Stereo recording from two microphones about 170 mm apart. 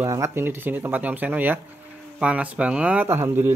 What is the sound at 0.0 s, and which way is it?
Speech, 15° right (ahead or behind).